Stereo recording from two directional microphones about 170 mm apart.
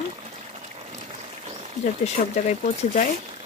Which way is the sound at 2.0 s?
45° left (ahead or behind).